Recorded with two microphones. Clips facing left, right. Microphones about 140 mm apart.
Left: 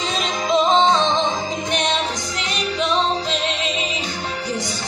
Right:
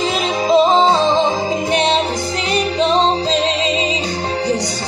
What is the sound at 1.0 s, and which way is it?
Music, 10° right (ahead or behind).